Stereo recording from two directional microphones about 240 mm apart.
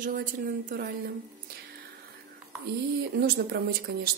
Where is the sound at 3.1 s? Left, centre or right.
Right.